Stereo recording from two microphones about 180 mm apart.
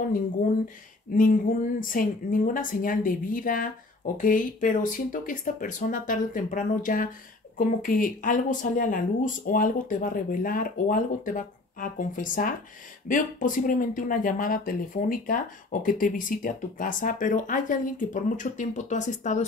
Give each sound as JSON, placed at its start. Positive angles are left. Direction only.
{"t": 1.1, "sound": "speech", "side_deg": 50}